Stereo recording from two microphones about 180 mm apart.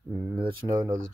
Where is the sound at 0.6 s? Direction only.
15° right (ahead or behind).